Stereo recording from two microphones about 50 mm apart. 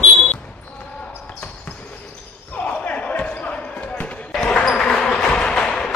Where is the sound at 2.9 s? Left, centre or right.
Left.